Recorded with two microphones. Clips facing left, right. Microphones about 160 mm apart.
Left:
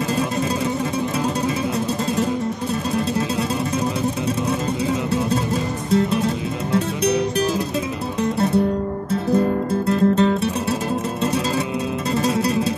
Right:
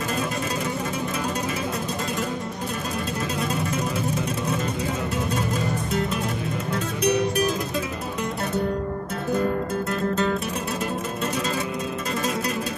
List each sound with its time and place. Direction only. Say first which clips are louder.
7.0 s music: right 2 dB; 30° left (ahead or behind)
9.8 s music: left 10 dB; 30° left (ahead or behind)